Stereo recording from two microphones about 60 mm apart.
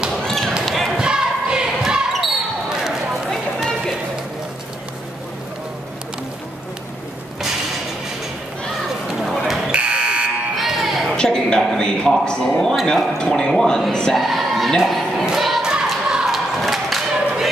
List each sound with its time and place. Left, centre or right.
0.2 s basketball bounce: centre
0.9 s a sound: centre
1.8 s basketball bounce: centre
3.3 s run: centre
9.2 s a sound: centre
9.7 s fire alarm: centre
10.5 s music: centre
11.1 s a sound: centre
15.2 s music: centre
16.1 s battle cry: centre